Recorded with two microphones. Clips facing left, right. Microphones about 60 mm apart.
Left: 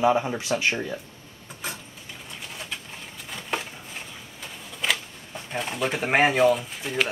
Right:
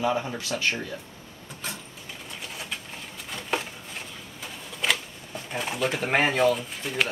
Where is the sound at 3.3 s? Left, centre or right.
Centre.